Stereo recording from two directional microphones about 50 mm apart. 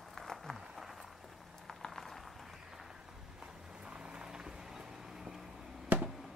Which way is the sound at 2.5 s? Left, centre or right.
Centre.